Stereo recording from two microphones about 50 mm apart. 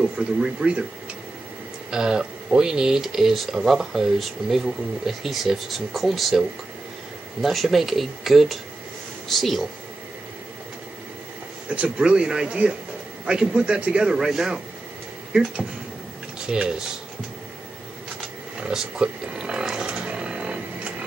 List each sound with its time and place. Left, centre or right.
0.0 s speech: centre
1.9 s speech: centre
7.4 s speech: centre
11.7 s speech: right
16.4 s speech: centre
18.7 s wild animals: centre
19.9 s a sound: right